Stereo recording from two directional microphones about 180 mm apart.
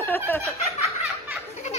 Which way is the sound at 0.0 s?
10° left (ahead or behind).